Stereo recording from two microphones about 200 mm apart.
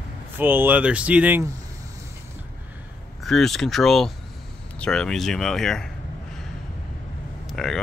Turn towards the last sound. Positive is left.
turn(degrees=0)  # may be behind; listen again after turning